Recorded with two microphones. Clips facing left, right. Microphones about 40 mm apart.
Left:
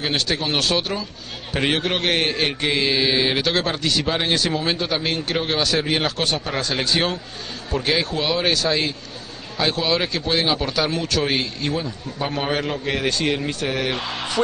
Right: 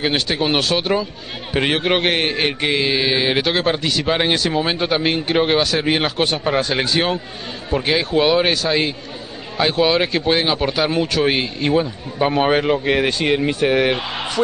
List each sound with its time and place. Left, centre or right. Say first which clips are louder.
0.0 s speech: right 4 dB; centre